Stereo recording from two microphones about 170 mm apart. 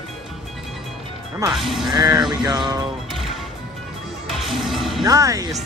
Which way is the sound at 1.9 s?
25° right (ahead or behind).